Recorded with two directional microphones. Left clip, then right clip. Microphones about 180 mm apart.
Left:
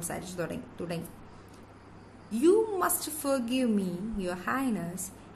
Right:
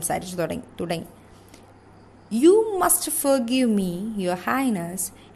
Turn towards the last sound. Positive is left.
turn(degrees=-45)  # may be behind; listen again after turning